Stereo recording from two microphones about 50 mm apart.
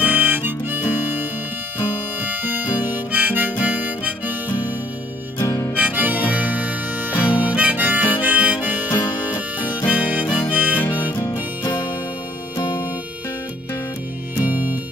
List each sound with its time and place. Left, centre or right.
0.0 s harmonica: right
5.8 s harmonica: right
8.9 s music: left
9.8 s music: right
10.5 s harmonica: right
10.9 s music: left
14.4 s music: right